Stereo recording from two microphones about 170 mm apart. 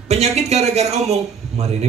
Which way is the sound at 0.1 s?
40° right (ahead or behind).